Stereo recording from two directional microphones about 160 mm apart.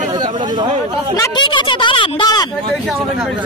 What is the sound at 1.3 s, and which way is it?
Speech, 30° left (ahead or behind).